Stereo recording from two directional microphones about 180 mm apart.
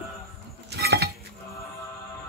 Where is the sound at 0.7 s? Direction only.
65° right (ahead or behind).